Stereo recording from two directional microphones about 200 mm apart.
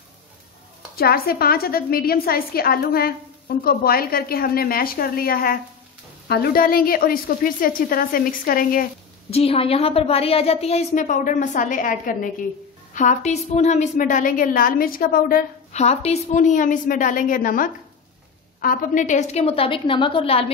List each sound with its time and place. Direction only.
0.9 s a woman's voice: 50° left (ahead or behind)
9.3 s a woman's voice: 30° left (ahead or behind)